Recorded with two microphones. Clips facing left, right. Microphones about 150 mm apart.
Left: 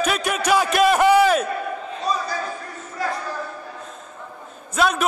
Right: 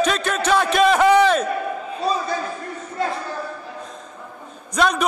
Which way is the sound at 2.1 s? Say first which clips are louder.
Right 2 dB; 30° right (ahead or behind).